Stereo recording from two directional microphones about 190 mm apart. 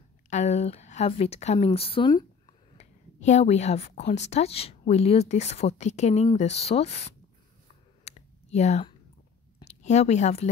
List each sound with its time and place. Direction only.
0.3 s a woman's voice: 35° left (ahead or behind)
2.8 s a woman's voice: 35° left (ahead or behind)
8.0 s a sound: 35° left (ahead or behind)
9.7 s a woman's voice: 35° left (ahead or behind)